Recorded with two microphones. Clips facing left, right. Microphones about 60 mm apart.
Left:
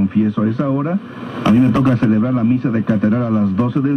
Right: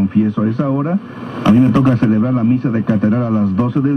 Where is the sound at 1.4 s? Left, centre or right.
Centre.